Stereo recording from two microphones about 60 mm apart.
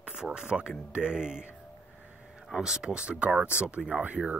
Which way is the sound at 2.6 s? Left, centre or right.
Centre.